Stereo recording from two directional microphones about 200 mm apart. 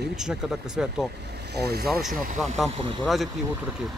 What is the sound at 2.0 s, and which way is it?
Speech, centre (ahead or behind).